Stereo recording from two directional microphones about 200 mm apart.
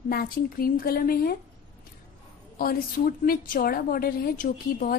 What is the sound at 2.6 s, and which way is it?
A woman's voice, 45° left (ahead or behind).